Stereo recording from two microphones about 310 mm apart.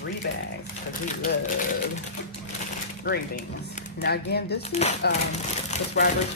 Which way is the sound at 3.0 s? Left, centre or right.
Left.